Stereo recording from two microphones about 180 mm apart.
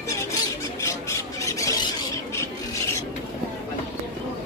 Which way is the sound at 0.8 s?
15° left (ahead or behind).